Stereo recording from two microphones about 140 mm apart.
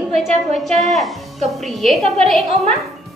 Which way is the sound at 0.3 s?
50° right (ahead or behind).